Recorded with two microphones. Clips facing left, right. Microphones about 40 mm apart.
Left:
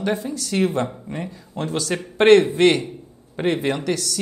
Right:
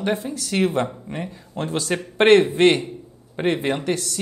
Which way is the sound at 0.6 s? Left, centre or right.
Right.